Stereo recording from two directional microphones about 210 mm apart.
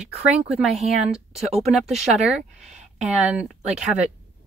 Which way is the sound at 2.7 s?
35° right (ahead or behind).